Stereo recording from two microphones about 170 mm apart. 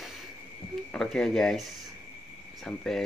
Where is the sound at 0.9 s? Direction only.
Centre (ahead or behind).